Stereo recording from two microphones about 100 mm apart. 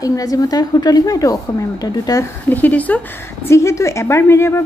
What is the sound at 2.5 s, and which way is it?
Speech, 15° left (ahead or behind).